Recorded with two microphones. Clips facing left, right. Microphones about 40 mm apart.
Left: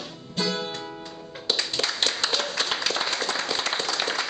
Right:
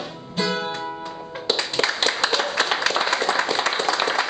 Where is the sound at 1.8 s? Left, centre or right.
Centre.